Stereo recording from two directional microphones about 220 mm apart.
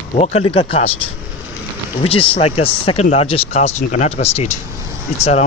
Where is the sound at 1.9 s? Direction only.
25° left (ahead or behind).